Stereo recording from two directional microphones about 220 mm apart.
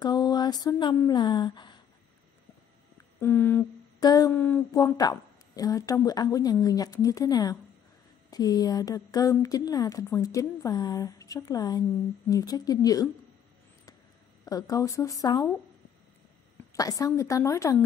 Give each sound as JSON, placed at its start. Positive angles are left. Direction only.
{"t": 0.0, "sound": "a sound", "side_deg": 20}
{"t": 3.2, "sound": "humming", "side_deg": 10}
{"t": 14.4, "sound": "humming", "side_deg": 15}
{"t": 16.7, "sound": "humming", "side_deg": 15}